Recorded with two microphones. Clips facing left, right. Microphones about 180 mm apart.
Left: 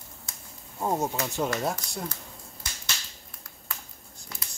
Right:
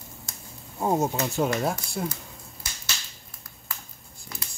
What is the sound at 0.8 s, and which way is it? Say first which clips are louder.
Speech: right 3 dB; 10° right (ahead or behind).